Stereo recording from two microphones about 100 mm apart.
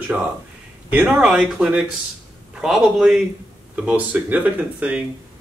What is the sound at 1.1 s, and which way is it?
A man's voice, 5° right (ahead or behind).